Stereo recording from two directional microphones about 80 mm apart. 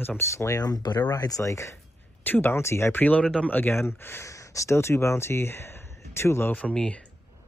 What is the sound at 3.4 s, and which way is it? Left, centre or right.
Speech, left.